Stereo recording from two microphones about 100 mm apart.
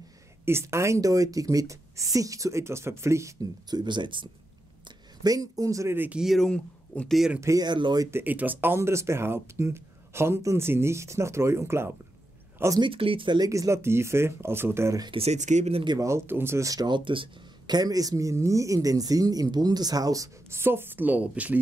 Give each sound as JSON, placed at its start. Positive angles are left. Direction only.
{"t": 0.5, "sound": "speech", "side_deg": -25}
{"t": 3.6, "sound": "speech", "side_deg": -45}
{"t": 4.8, "sound": "speech", "side_deg": -40}
{"t": 5.9, "sound": "speech", "side_deg": -15}
{"t": 6.2, "sound": "speech", "side_deg": 5}
{"t": 7.3, "sound": "speech", "side_deg": -30}
{"t": 7.6, "sound": "speech", "side_deg": -50}
{"t": 8.1, "sound": "speech", "side_deg": -20}
{"t": 12.9, "sound": "speech", "side_deg": -65}
{"t": 13.4, "sound": "speech", "side_deg": -30}
{"t": 15.1, "sound": "speech", "side_deg": -85}
{"t": 16.0, "sound": "speech", "side_deg": -25}